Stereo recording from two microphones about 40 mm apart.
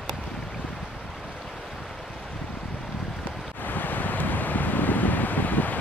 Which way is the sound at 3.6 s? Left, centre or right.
Left.